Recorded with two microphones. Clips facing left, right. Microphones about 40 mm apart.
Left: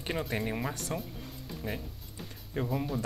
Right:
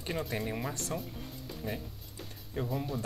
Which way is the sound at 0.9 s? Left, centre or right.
Centre.